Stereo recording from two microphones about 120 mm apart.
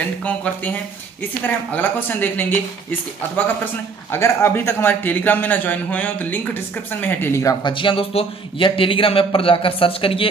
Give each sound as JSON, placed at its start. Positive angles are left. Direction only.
{"t": 0.0, "sound": "a man's voice", "side_deg": 10}
{"t": 7.6, "sound": "a man's voice", "side_deg": 45}